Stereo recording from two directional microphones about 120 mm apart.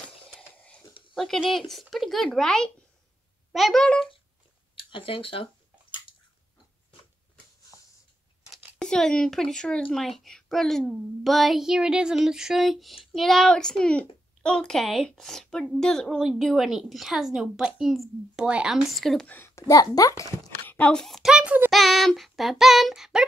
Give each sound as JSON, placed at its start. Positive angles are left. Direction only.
{"t": 1.1, "sound": "speech", "side_deg": 5}
{"t": 4.7, "sound": "speech", "side_deg": 50}
{"t": 8.7, "sound": "speech", "side_deg": 5}
{"t": 19.2, "sound": "a child's voice", "side_deg": 20}
{"t": 20.6, "sound": "a sound", "side_deg": 15}
{"t": 21.0, "sound": "speech", "side_deg": 0}